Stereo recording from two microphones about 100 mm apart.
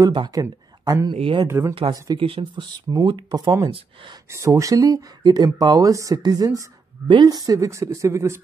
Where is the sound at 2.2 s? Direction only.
65° right (ahead or behind).